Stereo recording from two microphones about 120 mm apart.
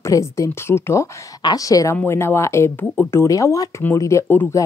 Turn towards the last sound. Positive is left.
turn(degrees=20)  # may be behind; listen again after turning